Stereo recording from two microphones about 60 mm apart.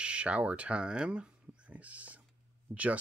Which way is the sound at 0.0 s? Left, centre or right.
Centre.